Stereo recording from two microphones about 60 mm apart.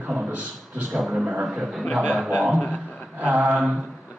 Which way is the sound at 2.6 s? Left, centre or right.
Left.